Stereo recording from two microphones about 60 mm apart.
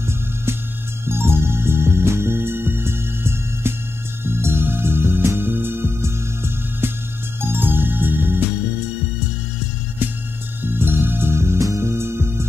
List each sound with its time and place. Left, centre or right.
1.0 s music: right
10.6 s music: right